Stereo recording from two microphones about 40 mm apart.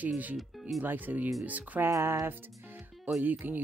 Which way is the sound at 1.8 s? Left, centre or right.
Right.